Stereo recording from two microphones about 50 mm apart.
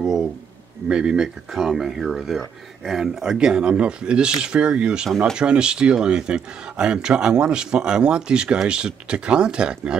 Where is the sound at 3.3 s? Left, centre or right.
Centre.